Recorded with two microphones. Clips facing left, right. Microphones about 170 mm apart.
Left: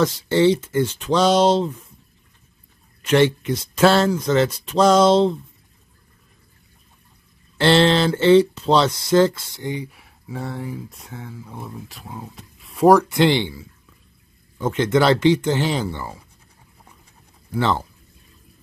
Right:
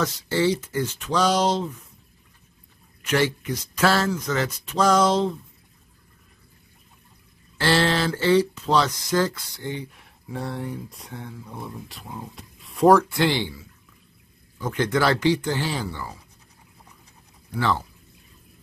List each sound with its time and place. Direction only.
0.0 s speech: 30° left (ahead or behind)
3.0 s speech: 30° left (ahead or behind)
7.5 s speech: 25° left (ahead or behind)
14.6 s speech: 25° left (ahead or behind)